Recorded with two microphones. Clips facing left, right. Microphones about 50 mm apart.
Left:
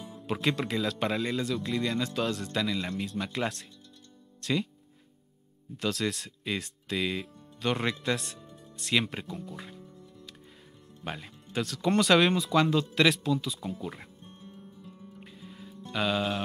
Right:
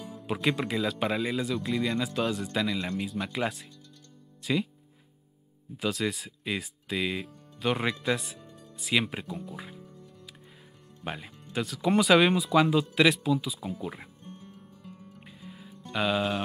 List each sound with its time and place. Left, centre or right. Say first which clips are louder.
0.3 s a man's voice: right 1 dB; centre
5.8 s a man's voice: right 1 dB; centre
8.7 s music: right 1 dB; centre
11.1 s a man's voice: right 1 dB; centre
14.4 s music: left 1 dB; right
15.1 s music: even; centre